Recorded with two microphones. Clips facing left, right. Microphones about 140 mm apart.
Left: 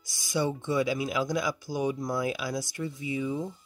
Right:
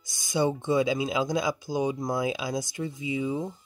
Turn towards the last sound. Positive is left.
turn(degrees=-20)  # may be behind; listen again after turning